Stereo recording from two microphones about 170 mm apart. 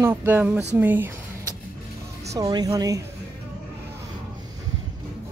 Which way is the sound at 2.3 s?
25° right (ahead or behind).